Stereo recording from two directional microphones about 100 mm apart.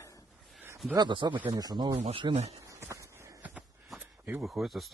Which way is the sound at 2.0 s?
80° right.